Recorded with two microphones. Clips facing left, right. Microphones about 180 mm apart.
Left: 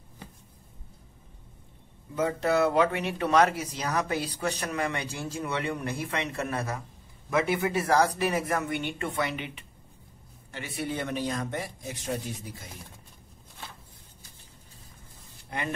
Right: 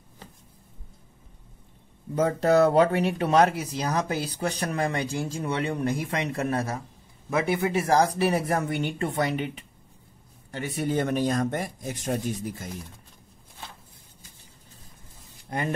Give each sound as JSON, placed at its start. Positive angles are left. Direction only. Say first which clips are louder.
{"t": 2.1, "sound": "speech", "louder": "right 5 dB", "side_deg": -40}
{"t": 15.5, "sound": "speech", "louder": "right 4 dB", "side_deg": -40}